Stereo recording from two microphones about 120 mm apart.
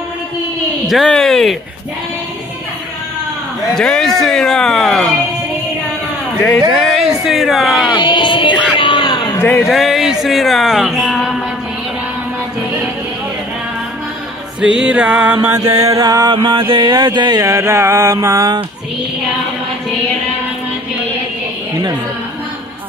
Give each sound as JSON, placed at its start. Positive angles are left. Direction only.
{"t": 0.8, "sound": "speech", "side_deg": 5}
{"t": 3.7, "sound": "speech", "side_deg": 5}
{"t": 6.7, "sound": "speech", "side_deg": 0}
{"t": 7.9, "sound": "speech", "side_deg": 40}
{"t": 8.7, "sound": "a sound", "side_deg": 40}
{"t": 9.5, "sound": "speech", "side_deg": 0}
{"t": 14.6, "sound": "music", "side_deg": -10}
{"t": 15.4, "sound": "mantra", "side_deg": -20}
{"t": 16.3, "sound": "mantra", "side_deg": -45}